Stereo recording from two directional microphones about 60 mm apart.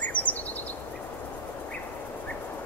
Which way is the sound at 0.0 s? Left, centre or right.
Left.